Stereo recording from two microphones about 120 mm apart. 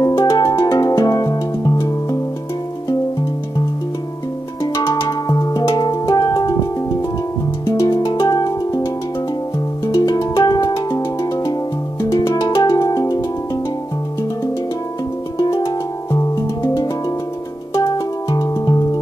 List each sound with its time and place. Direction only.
0.0 s music: 25° left (ahead or behind)
4.7 s music: 30° left (ahead or behind)
7.6 s music: 30° left (ahead or behind)
10.0 s music: 30° left (ahead or behind)
15.3 s music: 35° left (ahead or behind)